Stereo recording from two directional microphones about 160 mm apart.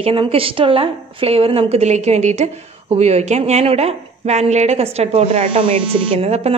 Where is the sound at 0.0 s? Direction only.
35° right (ahead or behind).